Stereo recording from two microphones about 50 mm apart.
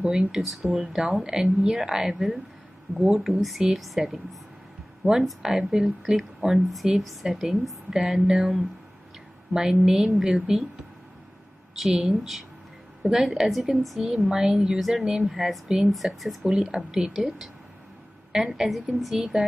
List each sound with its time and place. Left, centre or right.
0.0 s speech: right
0.3 s a woman's voice: centre
9.5 s a woman's voice: centre
11.9 s a woman's voice: centre
14.8 s speech: centre
16.4 s a woman's voice: centre
18.6 s speech: centre